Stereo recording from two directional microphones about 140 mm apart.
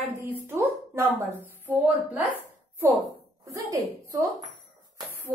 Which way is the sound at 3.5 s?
25° right (ahead or behind).